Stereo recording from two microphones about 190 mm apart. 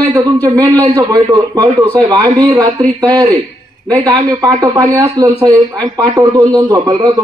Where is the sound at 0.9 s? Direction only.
20° right (ahead or behind).